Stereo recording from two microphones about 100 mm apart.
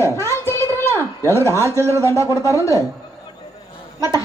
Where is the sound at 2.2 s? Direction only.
30° left (ahead or behind).